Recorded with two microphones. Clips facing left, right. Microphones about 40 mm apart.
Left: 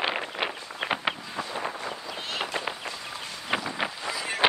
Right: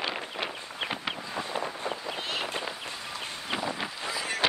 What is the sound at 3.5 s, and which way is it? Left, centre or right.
Wind noise, left.